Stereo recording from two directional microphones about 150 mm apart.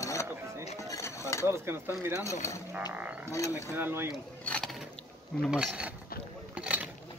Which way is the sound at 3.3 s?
20° left (ahead or behind).